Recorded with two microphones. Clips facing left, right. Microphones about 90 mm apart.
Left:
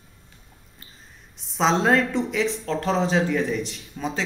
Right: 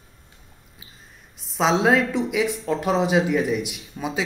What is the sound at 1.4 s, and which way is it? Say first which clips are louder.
Speech: right 1 dB; centre (ahead or behind).